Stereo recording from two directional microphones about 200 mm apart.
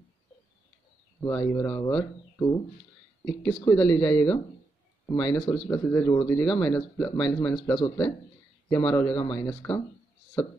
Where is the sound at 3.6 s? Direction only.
20° left (ahead or behind).